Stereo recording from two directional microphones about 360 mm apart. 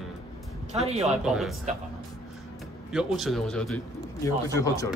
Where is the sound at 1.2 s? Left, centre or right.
Centre.